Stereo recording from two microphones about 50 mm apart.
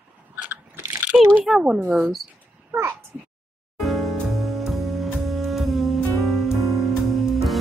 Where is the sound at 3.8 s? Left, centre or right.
Centre.